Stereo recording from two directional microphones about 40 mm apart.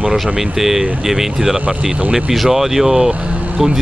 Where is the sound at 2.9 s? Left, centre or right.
Right.